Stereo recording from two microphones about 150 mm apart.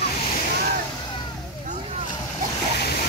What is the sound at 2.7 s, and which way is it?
Boat, 90° left.